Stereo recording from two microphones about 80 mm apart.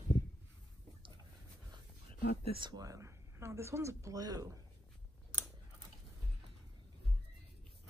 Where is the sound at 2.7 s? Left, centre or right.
Right.